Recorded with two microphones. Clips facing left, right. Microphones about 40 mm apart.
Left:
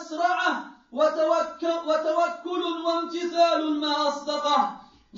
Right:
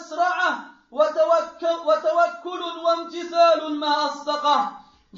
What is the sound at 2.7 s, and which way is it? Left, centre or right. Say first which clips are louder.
A man's voice: right 3 dB; right.